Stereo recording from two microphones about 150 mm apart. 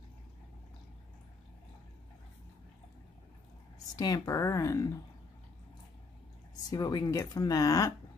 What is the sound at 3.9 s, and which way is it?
Speech, 25° left (ahead or behind).